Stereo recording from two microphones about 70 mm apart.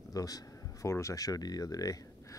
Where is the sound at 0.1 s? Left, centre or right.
Left.